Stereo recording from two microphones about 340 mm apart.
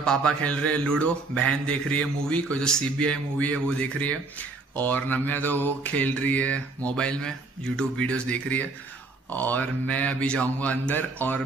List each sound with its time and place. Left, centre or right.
0.0 s speech: centre